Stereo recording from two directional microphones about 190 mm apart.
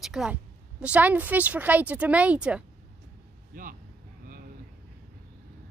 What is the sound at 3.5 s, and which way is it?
Vehicle, 45° right (ahead or behind).